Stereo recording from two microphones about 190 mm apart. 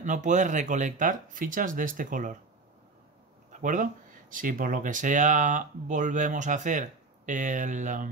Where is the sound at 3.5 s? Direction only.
40° right (ahead or behind).